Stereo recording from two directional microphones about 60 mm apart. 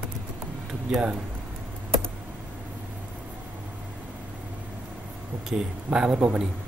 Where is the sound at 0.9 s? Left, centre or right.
Centre.